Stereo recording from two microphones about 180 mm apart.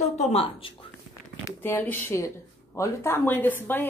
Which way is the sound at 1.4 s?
10° left (ahead or behind).